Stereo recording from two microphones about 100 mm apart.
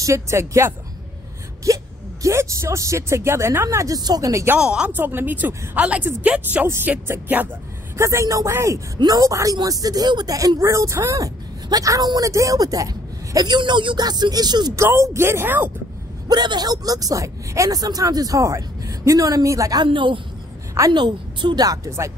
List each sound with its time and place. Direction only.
0.0 s speech: 30° right (ahead or behind)
4.6 s speech: 10° right (ahead or behind)
8.0 s speech: 30° right (ahead or behind); by 14.7 s 45° right (ahead or behind)
14.8 s speech: 25° right (ahead or behind)
16.3 s speech: 45° right (ahead or behind)
19.8 s a woman's voice: 55° right (ahead or behind); by 22.1 s 30° right (ahead or behind)